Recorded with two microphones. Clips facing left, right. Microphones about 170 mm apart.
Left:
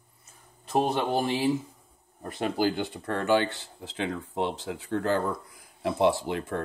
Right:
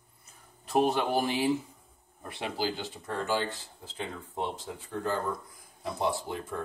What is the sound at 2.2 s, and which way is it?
Speech, 45° left (ahead or behind).